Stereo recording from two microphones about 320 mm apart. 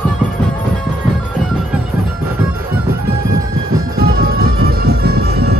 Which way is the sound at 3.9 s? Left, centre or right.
Right.